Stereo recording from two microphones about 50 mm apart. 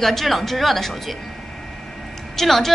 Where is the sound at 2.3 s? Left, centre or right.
Centre.